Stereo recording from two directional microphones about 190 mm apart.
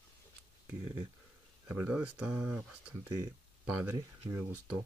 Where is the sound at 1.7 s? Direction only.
10° right (ahead or behind).